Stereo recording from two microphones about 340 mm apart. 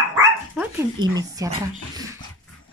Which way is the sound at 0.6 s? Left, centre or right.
Centre.